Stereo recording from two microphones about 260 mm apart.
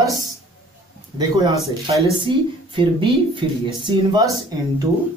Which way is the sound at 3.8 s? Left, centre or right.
Centre.